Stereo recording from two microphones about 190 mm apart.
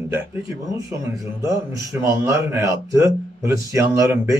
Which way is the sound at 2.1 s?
15° right (ahead or behind).